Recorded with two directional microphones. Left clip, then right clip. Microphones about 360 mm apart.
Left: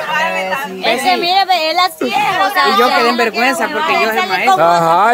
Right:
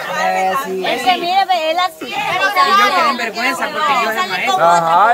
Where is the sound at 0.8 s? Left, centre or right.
Left.